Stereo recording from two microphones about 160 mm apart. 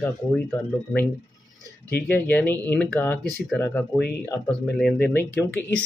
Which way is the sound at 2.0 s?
10° left (ahead or behind).